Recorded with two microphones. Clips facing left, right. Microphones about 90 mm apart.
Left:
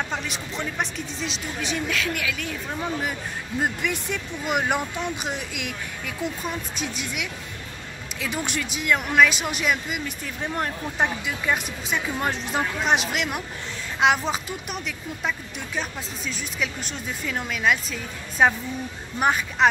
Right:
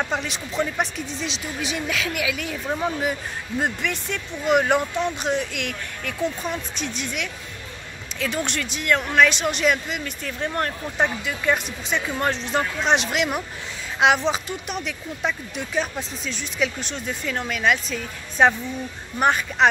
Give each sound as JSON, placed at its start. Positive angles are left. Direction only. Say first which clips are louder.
{"t": 0.1, "sound": "speech", "louder": "right 3 dB", "side_deg": 0}
{"t": 3.8, "sound": "speech", "louder": "even", "side_deg": 10}